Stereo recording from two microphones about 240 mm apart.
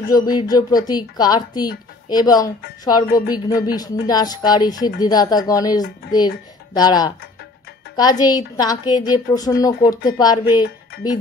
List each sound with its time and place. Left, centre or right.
0.1 s a woman's voice: centre
10.9 s speech: left